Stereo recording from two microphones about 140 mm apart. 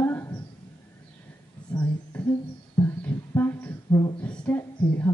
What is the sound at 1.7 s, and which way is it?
Speech, 5° left (ahead or behind).